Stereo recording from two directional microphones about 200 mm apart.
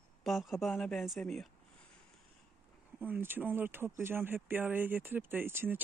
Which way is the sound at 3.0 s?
10° right (ahead or behind).